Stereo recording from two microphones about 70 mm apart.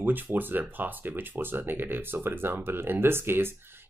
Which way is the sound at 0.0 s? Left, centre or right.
Right.